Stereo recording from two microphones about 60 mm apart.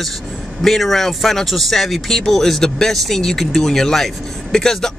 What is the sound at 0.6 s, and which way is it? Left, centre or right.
Speech, centre.